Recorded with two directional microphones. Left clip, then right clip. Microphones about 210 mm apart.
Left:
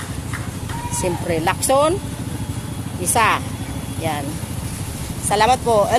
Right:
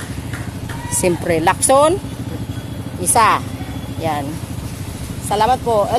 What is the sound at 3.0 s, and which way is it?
Speech, 15° right (ahead or behind).